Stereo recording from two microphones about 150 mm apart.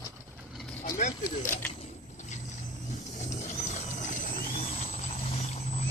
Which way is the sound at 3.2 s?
50° left (ahead or behind).